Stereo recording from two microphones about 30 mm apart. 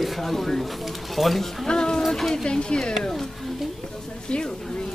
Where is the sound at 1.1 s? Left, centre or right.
Centre.